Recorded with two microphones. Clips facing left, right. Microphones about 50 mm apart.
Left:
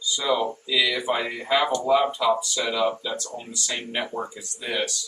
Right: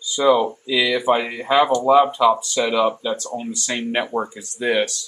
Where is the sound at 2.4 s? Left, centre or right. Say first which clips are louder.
Right 5 dB; right.